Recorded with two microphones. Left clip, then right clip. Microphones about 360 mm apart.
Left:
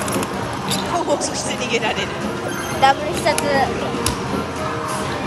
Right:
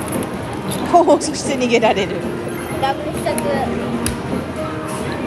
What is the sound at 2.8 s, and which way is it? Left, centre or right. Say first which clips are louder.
Speech: left 5 dB; left.